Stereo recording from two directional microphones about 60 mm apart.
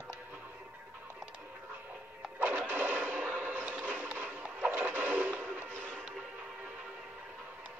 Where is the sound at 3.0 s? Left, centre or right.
Centre.